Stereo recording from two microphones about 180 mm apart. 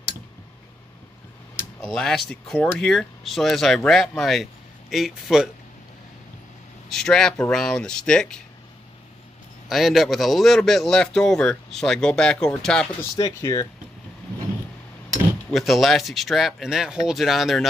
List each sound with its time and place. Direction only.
1.8 s speech: centre (ahead or behind)
6.9 s speech: 5° left (ahead or behind)
9.7 s speech: centre (ahead or behind)
13.1 s speech: 20° left (ahead or behind)
15.5 s speech: centre (ahead or behind)